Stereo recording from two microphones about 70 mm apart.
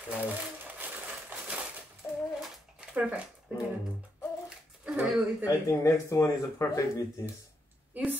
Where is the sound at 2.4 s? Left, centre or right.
Centre.